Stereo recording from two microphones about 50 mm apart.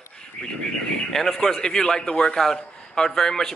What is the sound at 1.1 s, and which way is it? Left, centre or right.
Speech, centre.